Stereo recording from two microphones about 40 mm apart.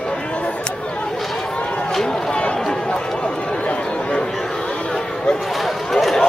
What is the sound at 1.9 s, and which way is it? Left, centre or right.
Run, centre.